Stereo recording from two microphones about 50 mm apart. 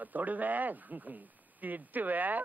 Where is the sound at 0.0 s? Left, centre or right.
Right.